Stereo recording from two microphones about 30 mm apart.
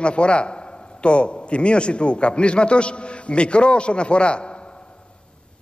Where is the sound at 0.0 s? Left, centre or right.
Left.